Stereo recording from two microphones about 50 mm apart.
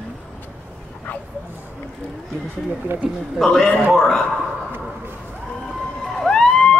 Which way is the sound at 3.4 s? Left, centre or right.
Centre.